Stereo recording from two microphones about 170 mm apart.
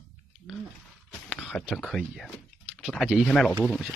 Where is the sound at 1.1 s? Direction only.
5° left (ahead or behind).